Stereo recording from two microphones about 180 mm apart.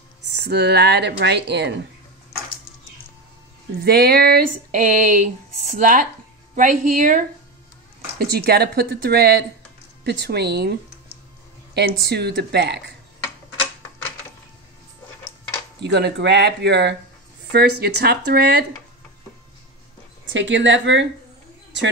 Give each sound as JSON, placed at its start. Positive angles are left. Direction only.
{"t": 0.3, "sound": "speech", "side_deg": -70}
{"t": 3.8, "sound": "a sound", "side_deg": -60}
{"t": 8.2, "sound": "speech", "side_deg": -65}
{"t": 12.1, "sound": "speech", "side_deg": -65}
{"t": 15.8, "sound": "speech", "side_deg": -70}
{"t": 20.2, "sound": "speech", "side_deg": -90}